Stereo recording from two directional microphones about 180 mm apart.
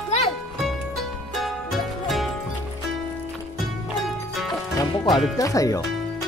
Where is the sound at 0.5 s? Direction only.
Centre (ahead or behind).